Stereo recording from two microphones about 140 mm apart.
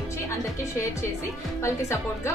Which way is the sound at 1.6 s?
20° left (ahead or behind).